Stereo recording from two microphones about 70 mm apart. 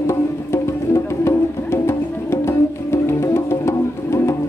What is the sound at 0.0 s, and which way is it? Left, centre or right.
Music, left.